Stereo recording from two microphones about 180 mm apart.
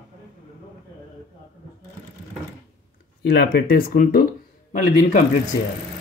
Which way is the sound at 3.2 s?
60° left (ahead or behind).